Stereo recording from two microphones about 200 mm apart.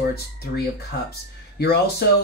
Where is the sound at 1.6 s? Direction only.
50° left (ahead or behind).